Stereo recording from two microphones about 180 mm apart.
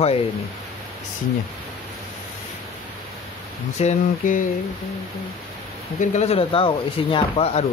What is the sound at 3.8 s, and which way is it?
Speech, 45° left (ahead or behind).